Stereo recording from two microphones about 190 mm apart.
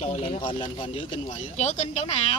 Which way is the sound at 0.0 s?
35° left (ahead or behind).